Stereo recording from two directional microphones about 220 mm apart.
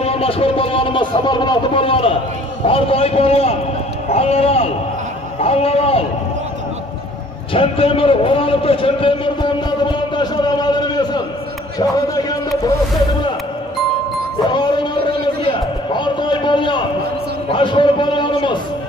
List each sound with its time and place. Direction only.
0.0 s a man's voice: 25° left (ahead or behind)
7.5 s a man's voice: 25° left (ahead or behind)
14.5 s music: 20° left (ahead or behind)
15.9 s a sound: 20° left (ahead or behind)
17.5 s a man's voice: 25° left (ahead or behind)